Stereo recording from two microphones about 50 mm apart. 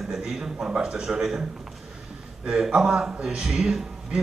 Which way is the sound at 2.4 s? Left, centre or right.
Centre.